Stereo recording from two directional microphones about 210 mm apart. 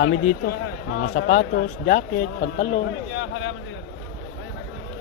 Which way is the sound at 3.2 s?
65° left (ahead or behind).